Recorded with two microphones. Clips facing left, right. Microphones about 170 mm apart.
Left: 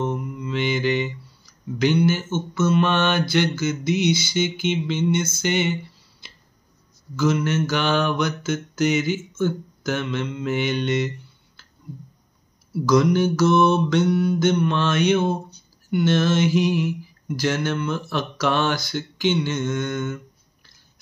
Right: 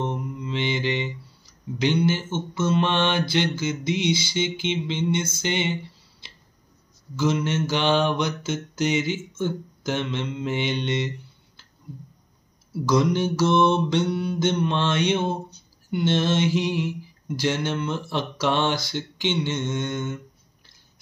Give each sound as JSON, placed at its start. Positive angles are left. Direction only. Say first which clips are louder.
{"t": 0.0, "sound": "mantra", "louder": "left 2 dB", "side_deg": -30}
{"t": 7.2, "sound": "mantra", "louder": "left 2 dB", "side_deg": -25}
{"t": 12.8, "sound": "mantra", "louder": "left 3 dB", "side_deg": -25}